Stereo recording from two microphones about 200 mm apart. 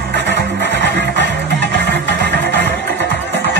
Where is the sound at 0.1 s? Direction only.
60° right (ahead or behind).